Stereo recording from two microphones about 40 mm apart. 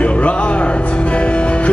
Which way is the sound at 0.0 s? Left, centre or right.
Left.